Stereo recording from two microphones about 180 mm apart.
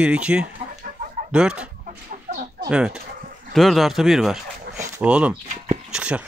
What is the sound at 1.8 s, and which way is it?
Chicken, 45° right (ahead or behind).